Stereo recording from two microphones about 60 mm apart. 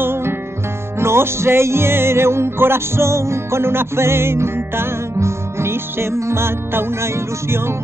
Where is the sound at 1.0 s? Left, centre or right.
Right.